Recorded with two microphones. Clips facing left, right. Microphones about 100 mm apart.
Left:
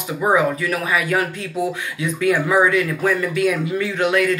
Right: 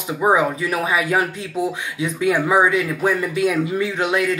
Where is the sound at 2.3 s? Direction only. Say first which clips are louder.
Even; 20° right (ahead or behind).